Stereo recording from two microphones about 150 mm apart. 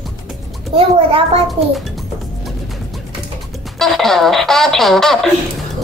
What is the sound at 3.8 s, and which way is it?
Speech, centre (ahead or behind).